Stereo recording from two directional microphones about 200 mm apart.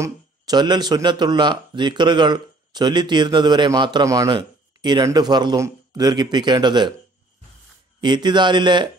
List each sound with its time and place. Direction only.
0.0 s speech: 20° right (ahead or behind)
8.0 s speech: 20° right (ahead or behind)